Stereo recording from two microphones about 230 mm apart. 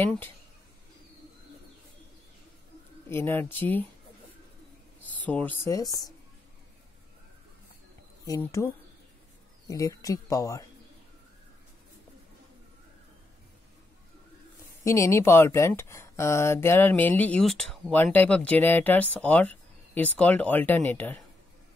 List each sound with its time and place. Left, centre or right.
0.0 s speech: centre
3.1 s speech: centre
5.2 s speech: centre
8.3 s speech: centre
9.7 s speech: centre
14.9 s speech: centre